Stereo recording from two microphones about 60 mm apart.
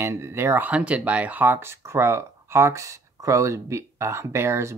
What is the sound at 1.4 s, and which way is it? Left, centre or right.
Speech, right.